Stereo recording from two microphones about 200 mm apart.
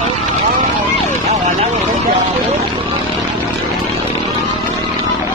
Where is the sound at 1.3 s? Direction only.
35° right (ahead or behind).